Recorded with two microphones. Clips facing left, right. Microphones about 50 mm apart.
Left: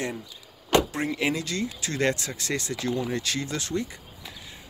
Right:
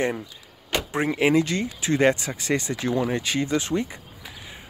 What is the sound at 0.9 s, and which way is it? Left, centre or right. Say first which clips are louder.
Speech: right 7 dB; right.